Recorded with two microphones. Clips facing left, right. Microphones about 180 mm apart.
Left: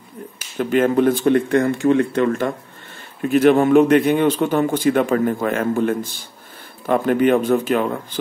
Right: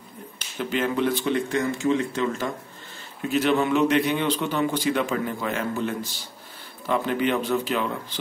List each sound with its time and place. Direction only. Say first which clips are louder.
0.6 s a man's voice: left 8 dB; 50° left (ahead or behind)